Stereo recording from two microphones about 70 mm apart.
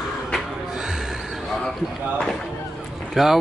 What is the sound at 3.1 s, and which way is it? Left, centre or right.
Speech, centre.